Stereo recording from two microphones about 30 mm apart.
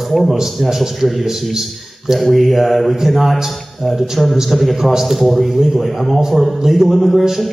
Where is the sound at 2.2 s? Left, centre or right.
Centre.